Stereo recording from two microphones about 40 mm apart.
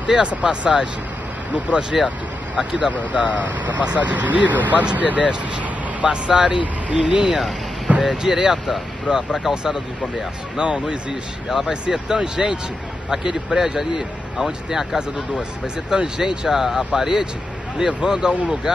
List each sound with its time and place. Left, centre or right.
0.0 s speech: right
1.7 s speech: centre
3.1 s speech: right
3.4 s speech: right
6.0 s speech: right
7.2 s speech: centre
8.1 s speech: centre
8.6 s speech: centre
9.5 s speech: centre
11.4 s speech: centre
11.7 s speech: right; by 15.4 s centre
15.6 s speech: centre